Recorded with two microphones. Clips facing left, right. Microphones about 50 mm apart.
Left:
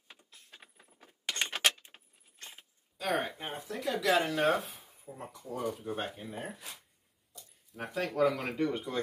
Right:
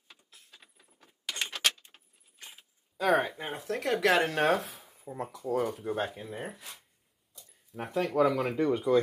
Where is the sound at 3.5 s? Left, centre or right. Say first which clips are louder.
Right 4 dB; right.